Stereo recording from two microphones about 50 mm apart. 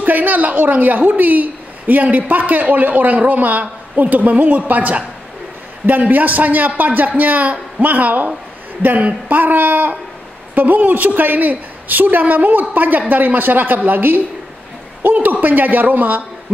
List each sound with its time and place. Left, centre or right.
0.0 s a woman's voice: right